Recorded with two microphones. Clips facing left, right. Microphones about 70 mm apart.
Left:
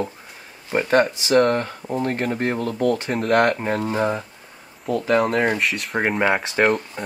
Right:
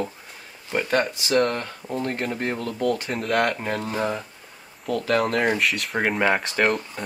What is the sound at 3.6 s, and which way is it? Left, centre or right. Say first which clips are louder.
Speech: left 4 dB; centre.